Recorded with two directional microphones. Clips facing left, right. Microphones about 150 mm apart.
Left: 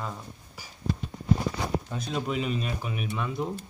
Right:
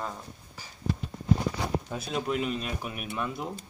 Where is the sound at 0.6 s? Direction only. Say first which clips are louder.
Even; 10° left (ahead or behind).